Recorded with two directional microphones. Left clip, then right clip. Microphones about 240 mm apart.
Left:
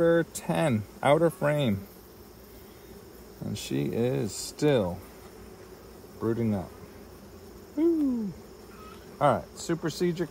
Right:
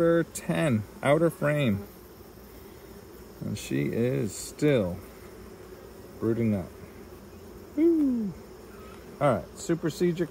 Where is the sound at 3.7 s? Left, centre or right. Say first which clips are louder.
Even; left.